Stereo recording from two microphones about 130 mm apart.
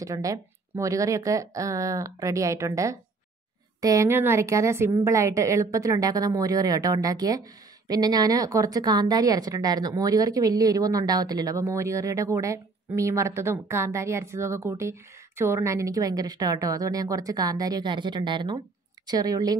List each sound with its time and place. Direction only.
0.0 s speech: 25° right (ahead or behind)